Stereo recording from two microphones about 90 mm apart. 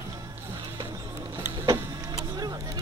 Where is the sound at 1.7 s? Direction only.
45° right (ahead or behind).